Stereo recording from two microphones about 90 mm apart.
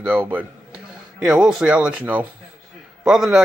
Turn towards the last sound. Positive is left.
turn(degrees=-5)  # may be behind; listen again after turning